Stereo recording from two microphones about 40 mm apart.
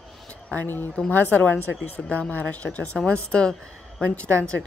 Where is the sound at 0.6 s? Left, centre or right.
Left.